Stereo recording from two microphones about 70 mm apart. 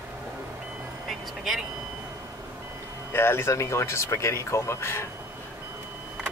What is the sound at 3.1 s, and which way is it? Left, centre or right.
Speech, left.